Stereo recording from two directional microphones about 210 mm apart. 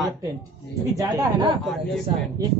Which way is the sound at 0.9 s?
15° right (ahead or behind).